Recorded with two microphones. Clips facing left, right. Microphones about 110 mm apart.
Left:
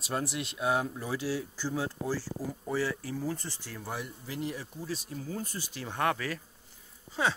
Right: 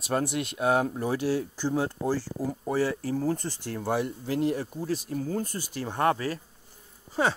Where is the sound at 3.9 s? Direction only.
70° right (ahead or behind); by 6.4 s 35° right (ahead or behind).